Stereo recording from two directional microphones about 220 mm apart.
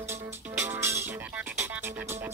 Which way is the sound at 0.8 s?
10° right (ahead or behind).